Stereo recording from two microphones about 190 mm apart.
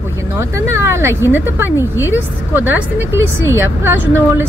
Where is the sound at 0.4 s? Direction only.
15° right (ahead or behind).